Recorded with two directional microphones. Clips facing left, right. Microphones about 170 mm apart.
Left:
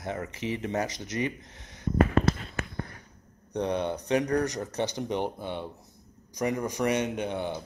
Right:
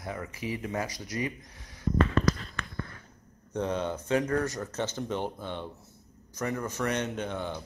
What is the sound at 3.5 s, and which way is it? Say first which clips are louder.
Mantra: left 2 dB; 15° left (ahead or behind).